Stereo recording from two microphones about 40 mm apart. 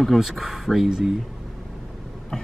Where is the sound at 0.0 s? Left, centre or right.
Centre.